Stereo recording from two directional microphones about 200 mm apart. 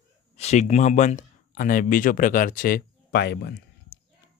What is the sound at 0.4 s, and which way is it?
Speech, 35° left (ahead or behind).